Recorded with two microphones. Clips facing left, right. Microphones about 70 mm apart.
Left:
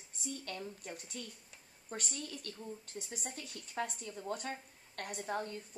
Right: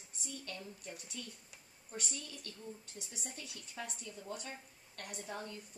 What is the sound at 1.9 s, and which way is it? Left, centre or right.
A woman's voice, left.